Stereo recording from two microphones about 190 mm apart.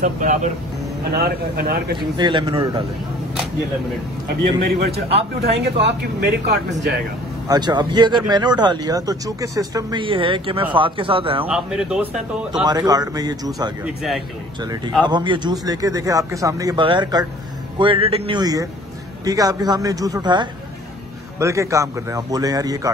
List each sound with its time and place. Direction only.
0.0 s speech: 40° right (ahead or behind)
1.1 s speech: 55° right (ahead or behind)
2.1 s speech: 25° right (ahead or behind)
4.6 s speech: 55° right (ahead or behind)
7.4 s speech: 20° right (ahead or behind)
11.4 s a man's voice: 5° right (ahead or behind)
12.6 s speech: 20° right (ahead or behind)
13.8 s a man's voice: centre (ahead or behind)
15.0 s a man's voice: 25° right (ahead or behind)